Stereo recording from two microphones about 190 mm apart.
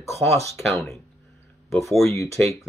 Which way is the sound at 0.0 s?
15° left (ahead or behind).